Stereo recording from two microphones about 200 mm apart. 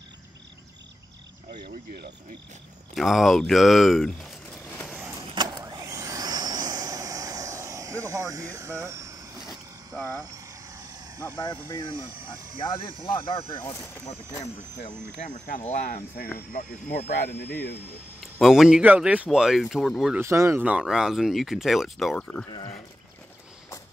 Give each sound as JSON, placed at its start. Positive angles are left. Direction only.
{"t": 2.9, "sound": "speech", "side_deg": 0}
{"t": 5.3, "sound": "vehicle", "side_deg": -20}
{"t": 10.3, "sound": "vehicle", "side_deg": -15}
{"t": 11.3, "sound": "speech", "side_deg": 20}
{"t": 13.6, "sound": "speech", "side_deg": 10}
{"t": 15.1, "sound": "speech", "side_deg": 40}
{"t": 16.5, "sound": "speech", "side_deg": 45}
{"t": 18.2, "sound": "speech", "side_deg": 0}
{"t": 20.2, "sound": "speech", "side_deg": -15}
{"t": 22.5, "sound": "speech", "side_deg": 20}